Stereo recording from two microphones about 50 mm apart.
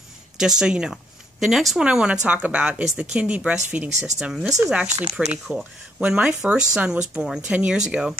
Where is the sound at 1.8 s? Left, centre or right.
Centre.